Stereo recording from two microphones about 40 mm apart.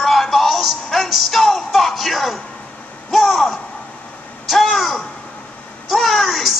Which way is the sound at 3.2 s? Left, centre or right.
Centre.